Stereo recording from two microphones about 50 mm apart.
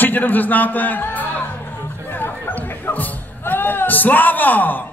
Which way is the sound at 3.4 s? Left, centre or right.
Left.